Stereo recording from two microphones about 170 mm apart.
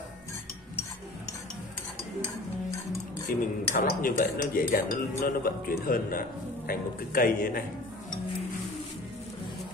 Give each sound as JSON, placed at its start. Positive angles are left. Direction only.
{"t": 3.3, "sound": "speech", "side_deg": 55}